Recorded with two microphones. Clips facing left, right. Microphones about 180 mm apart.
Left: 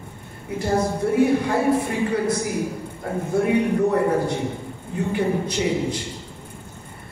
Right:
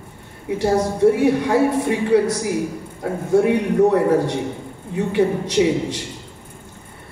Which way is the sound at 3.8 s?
75° right (ahead or behind).